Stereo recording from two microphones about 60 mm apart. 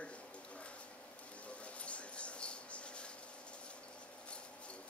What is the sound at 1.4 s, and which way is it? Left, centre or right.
Mouse, left.